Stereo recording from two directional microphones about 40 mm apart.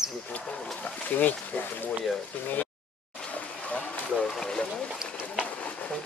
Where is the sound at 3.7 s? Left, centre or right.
Left.